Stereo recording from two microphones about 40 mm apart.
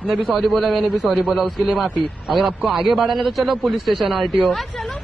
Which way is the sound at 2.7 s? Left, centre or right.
Centre.